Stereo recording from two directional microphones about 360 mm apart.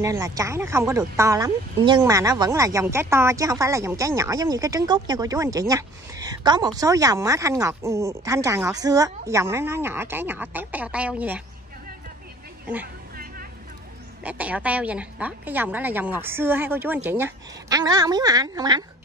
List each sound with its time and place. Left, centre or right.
0.0 s a woman's voice: centre
12.8 s a sound: right
14.2 s a woman's voice: centre